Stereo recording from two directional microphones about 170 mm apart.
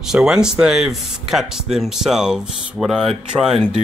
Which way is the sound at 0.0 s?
5° right (ahead or behind).